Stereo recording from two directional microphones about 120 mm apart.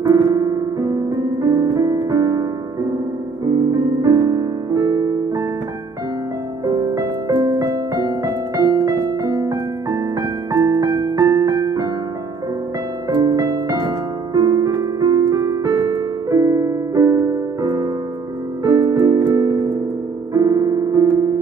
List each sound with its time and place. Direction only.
0.0 s piano: 30° right (ahead or behind)
3.4 s music: 30° right (ahead or behind)
6.6 s music: 35° right (ahead or behind)
13.1 s music: 30° right (ahead or behind)
20.3 s piano: 30° right (ahead or behind)